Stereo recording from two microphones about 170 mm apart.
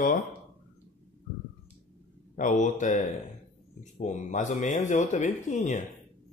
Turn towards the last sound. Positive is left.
turn(degrees=45)  # may be behind; listen again after turning